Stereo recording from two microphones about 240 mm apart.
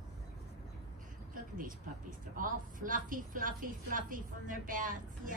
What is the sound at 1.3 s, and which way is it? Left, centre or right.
A woman's voice, right.